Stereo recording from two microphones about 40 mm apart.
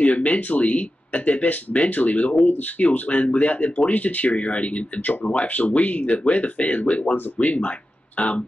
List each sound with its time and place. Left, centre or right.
0.0 s speech: left